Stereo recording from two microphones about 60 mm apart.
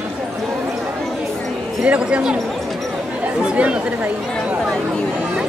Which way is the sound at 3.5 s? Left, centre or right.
Right.